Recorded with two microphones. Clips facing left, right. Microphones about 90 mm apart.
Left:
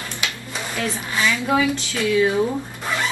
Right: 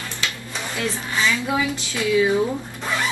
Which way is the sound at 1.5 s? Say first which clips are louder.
Left 3 dB; 15° right (ahead or behind).